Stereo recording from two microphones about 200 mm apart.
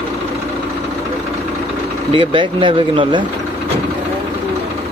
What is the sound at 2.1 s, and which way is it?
Speech, 25° right (ahead or behind).